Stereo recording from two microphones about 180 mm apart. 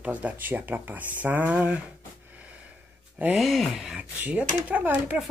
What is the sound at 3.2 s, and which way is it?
Speech, 5° right (ahead or behind).